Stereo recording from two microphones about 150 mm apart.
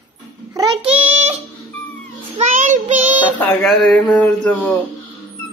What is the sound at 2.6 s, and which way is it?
Child singing, 50° right (ahead or behind).